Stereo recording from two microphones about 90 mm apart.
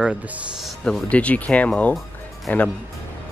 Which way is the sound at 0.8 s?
10° left (ahead or behind).